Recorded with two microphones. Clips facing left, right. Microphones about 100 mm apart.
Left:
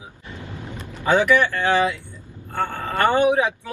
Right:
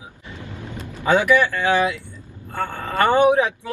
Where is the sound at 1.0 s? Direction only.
15° right (ahead or behind).